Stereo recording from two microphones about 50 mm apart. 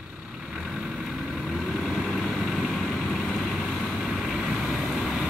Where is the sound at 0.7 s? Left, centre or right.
Centre.